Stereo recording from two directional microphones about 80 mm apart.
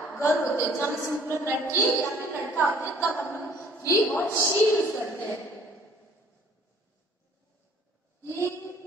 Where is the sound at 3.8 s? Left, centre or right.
Left.